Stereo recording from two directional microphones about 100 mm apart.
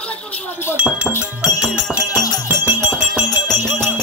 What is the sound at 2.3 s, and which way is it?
Music, 25° right (ahead or behind).